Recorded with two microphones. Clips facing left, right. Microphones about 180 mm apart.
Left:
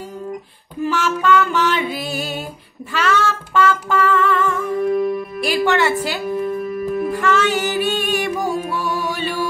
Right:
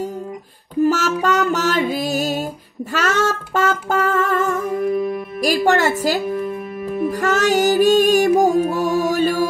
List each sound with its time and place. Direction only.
0.8 s music: 40° right (ahead or behind)
5.4 s a woman's voice: 40° right (ahead or behind)
7.1 s music: 40° right (ahead or behind)